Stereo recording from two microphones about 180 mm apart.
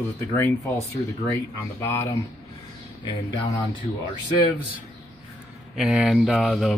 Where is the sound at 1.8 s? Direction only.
10° left (ahead or behind).